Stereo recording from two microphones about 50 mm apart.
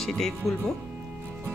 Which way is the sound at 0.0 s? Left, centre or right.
Centre.